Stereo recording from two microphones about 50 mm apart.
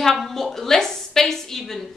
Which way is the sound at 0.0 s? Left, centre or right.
Centre.